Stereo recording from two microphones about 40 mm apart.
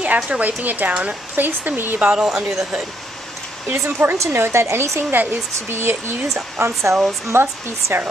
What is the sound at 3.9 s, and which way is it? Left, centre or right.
A woman's voice, right.